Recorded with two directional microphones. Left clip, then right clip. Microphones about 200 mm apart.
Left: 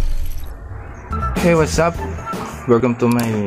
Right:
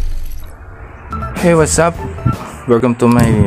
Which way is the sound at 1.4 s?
15° right (ahead or behind).